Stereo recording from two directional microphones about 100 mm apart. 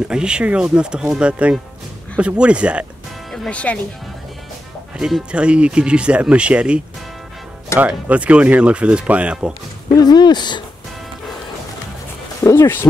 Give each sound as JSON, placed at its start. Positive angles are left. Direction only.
{"t": 0.1, "sound": "speech", "side_deg": -10}
{"t": 3.3, "sound": "speech", "side_deg": 10}
{"t": 4.9, "sound": "speech", "side_deg": -5}
{"t": 7.8, "sound": "speech", "side_deg": -15}
{"t": 10.0, "sound": "speech", "side_deg": 45}
{"t": 12.4, "sound": "speech", "side_deg": 25}